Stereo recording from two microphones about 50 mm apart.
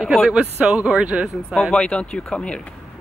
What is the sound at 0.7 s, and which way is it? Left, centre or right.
Speech, right.